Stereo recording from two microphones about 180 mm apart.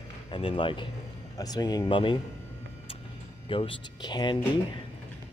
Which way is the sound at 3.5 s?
30° left (ahead or behind).